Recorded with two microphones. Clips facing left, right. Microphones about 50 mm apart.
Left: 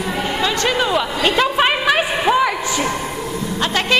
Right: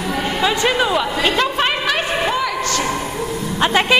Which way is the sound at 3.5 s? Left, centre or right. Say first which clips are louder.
Right 5 dB; centre.